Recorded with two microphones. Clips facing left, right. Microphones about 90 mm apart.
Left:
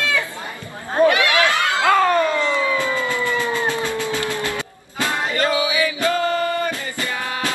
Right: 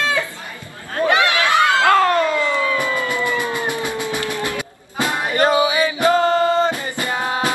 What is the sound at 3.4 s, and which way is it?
Cat, 15° right (ahead or behind).